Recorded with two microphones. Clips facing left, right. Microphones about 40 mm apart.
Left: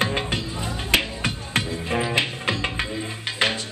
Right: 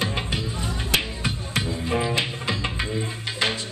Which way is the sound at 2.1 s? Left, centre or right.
Left.